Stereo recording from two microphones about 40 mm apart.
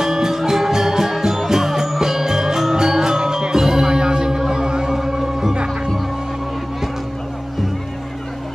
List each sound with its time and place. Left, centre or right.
0.0 s music: centre
4.9 s music: centre